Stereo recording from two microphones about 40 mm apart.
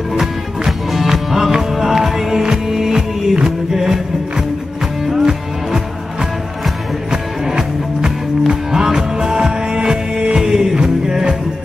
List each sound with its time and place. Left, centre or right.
0.1 s music: centre
7.1 s music: centre